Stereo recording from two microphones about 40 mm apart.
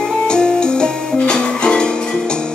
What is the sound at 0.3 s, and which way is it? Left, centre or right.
Music, left.